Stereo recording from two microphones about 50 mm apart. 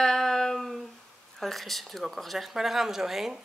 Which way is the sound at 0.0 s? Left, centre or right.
Centre.